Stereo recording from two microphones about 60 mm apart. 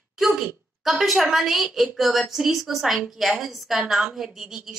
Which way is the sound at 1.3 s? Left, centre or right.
Centre.